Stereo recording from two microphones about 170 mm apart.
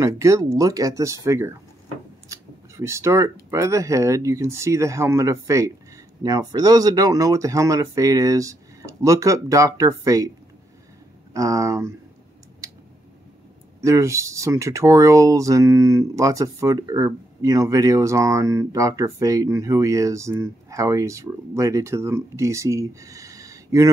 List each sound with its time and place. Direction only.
0.0 s speech: 20° right (ahead or behind)
2.2 s a sound: 15° right (ahead or behind)
3.4 s speech: 15° right (ahead or behind)
11.3 s speech: 20° right (ahead or behind)
12.6 s a sound: 20° right (ahead or behind)
13.7 s speech: 15° right (ahead or behind)